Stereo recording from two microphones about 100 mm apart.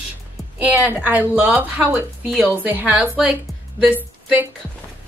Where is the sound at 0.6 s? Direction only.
15° right (ahead or behind).